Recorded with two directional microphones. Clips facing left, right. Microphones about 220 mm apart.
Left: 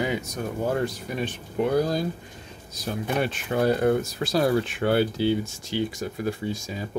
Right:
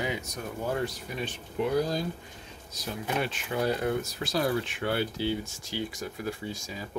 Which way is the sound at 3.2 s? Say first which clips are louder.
Left 7 dB; 50° left (ahead or behind).